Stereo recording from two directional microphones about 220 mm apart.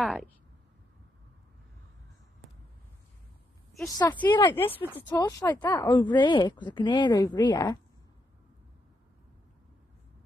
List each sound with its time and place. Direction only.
0.0 s speech: centre (ahead or behind)
3.9 s a woman's voice: 20° left (ahead or behind)